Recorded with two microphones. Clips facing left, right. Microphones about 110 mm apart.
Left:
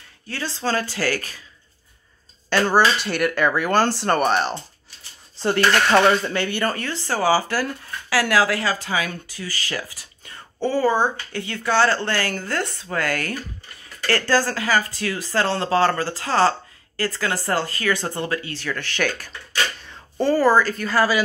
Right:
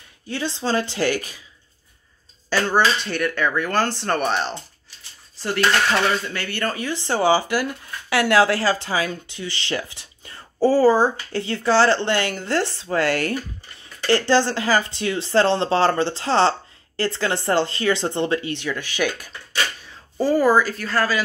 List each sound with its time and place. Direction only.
0.3 s speech: 20° right (ahead or behind)
2.5 s speech: 5° left (ahead or behind)
5.4 s speech: 30° left (ahead or behind)
6.7 s speech: 15° right (ahead or behind); by 21.2 s 10° left (ahead or behind)